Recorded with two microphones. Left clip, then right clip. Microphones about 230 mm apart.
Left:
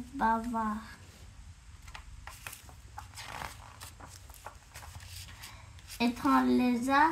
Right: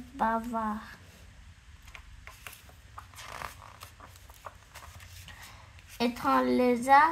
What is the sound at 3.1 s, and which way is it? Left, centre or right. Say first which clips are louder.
Zipper: right 1 dB; centre.